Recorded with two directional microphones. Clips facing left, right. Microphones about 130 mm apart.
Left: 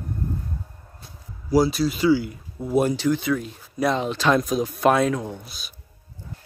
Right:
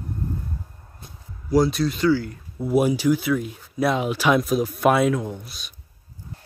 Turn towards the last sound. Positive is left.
turn(degrees=0)  # may be behind; listen again after turning